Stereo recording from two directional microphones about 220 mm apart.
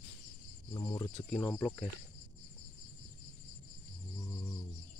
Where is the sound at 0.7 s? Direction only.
20° left (ahead or behind).